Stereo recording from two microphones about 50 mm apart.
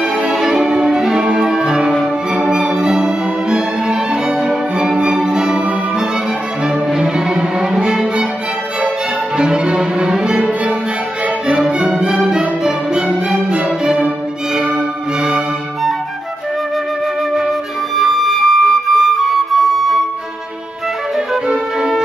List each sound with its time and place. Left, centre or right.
0.3 s music: centre
9.4 s cello: centre
11.4 s music: centre
17.9 s flute: centre
21.5 s music: centre